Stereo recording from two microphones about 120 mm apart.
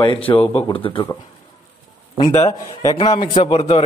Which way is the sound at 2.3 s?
25° left (ahead or behind).